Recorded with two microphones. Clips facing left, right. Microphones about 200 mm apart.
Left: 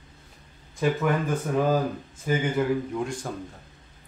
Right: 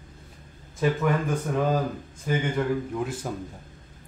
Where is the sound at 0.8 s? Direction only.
Centre (ahead or behind).